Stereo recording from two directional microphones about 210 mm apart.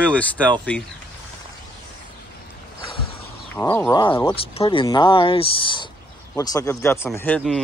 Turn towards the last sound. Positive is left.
turn(degrees=10)  # may be behind; listen again after turning